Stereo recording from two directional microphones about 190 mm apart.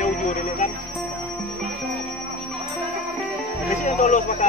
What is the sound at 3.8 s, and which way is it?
Speech, 35° left (ahead or behind).